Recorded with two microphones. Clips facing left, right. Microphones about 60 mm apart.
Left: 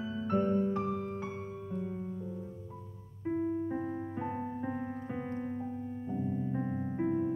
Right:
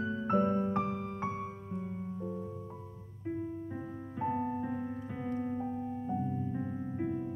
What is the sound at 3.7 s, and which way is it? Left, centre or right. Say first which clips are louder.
Music: left 5 dB; centre.